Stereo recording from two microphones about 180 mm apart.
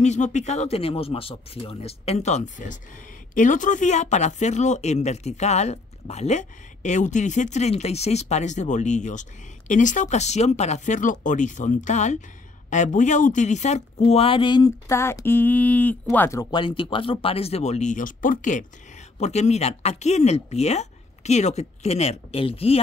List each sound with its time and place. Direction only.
0.0 s speech: 40° left (ahead or behind)